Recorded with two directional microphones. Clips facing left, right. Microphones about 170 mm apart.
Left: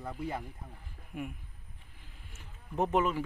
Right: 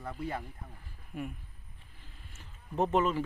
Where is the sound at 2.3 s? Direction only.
10° left (ahead or behind).